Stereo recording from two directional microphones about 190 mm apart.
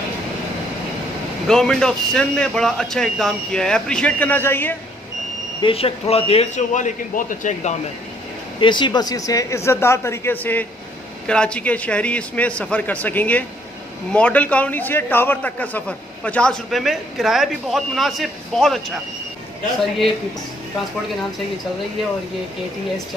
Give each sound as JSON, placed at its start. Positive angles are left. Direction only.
{"t": 1.5, "sound": "a man's voice", "side_deg": 5}
{"t": 5.6, "sound": "a man's voice", "side_deg": 30}
{"t": 8.5, "sound": "a man's voice", "side_deg": 25}